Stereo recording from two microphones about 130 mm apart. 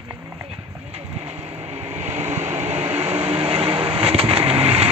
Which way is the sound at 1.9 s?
60° right (ahead or behind).